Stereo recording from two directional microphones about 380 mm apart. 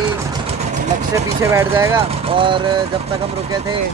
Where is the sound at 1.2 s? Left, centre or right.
Centre.